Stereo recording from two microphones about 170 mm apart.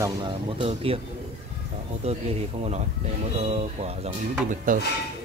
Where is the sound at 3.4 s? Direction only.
40° right (ahead or behind).